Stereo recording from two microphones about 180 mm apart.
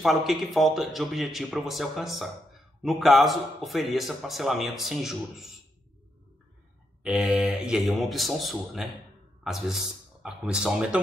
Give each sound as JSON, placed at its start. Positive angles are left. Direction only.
{"t": 0.0, "sound": "speech", "side_deg": 0}
{"t": 7.0, "sound": "speech", "side_deg": -5}